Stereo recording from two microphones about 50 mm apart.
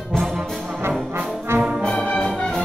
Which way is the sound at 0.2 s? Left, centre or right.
Centre.